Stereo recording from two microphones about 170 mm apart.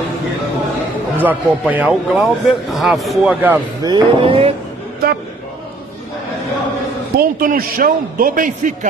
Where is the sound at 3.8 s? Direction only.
30° right (ahead or behind).